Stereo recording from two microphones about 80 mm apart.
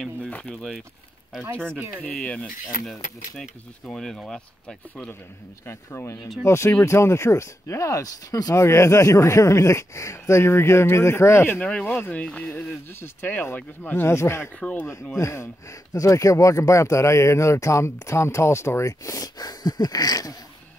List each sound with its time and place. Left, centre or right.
0.3 s speech: centre
0.6 s speech: centre
2.0 s speech: centre
5.7 s speech: left
8.5 s speech: left
11.6 s speech: centre; by 14.5 s left
14.6 s speech: centre
15.1 s speech: left